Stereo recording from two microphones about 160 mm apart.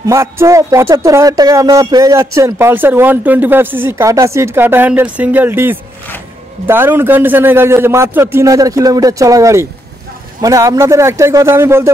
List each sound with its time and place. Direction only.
0.0 s speech: 20° right (ahead or behind)